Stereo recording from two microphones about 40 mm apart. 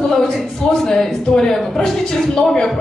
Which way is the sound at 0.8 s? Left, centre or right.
Centre.